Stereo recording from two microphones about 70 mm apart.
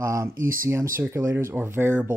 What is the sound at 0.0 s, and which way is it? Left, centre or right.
Speech, right.